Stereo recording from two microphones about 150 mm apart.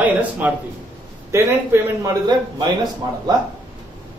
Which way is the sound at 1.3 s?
15° right (ahead or behind).